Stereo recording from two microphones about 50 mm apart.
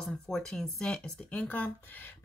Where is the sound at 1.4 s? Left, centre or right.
Left.